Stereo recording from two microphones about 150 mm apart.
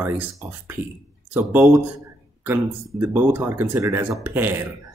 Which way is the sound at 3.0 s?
15° right (ahead or behind).